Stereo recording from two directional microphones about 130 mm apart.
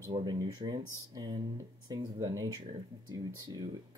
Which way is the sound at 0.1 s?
35° right (ahead or behind).